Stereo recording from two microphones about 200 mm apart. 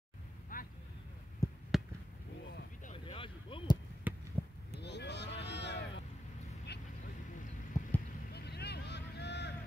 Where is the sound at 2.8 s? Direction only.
30° left (ahead or behind).